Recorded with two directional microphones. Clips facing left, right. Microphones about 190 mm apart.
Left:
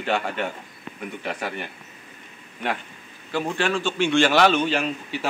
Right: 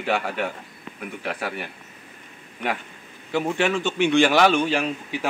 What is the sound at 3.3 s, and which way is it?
A man's voice, 15° right (ahead or behind).